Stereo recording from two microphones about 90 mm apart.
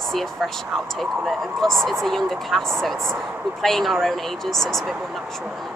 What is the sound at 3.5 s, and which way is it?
Speech, centre (ahead or behind).